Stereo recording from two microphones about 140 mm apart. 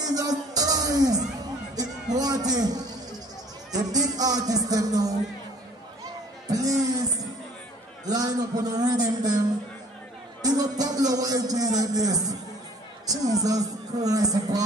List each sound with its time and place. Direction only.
0.0 s music: 25° right (ahead or behind)
2.1 s a man's voice: 25° right (ahead or behind)
6.4 s music: 25° right (ahead or behind)
8.0 s a man's voice: 25° right (ahead or behind)
10.4 s a man's voice: 25° right (ahead or behind)